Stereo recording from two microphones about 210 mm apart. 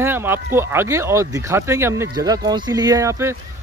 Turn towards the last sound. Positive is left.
turn(degrees=-15)  # may be behind; listen again after turning